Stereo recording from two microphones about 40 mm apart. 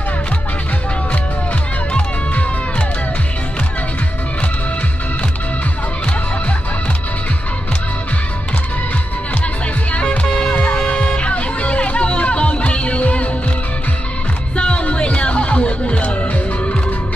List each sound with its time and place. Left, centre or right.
10.2 s music: left
14.6 s music: left